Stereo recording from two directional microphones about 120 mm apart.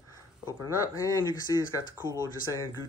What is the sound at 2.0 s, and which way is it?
Speech, 25° right (ahead or behind).